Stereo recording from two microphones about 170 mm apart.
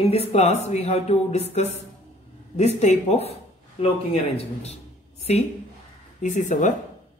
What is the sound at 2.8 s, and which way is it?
A man's voice, 40° left (ahead or behind).